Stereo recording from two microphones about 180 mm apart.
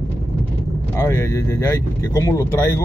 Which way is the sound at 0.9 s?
15° left (ahead or behind).